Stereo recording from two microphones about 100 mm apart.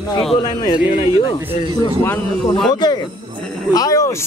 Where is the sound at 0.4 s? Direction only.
40° left (ahead or behind).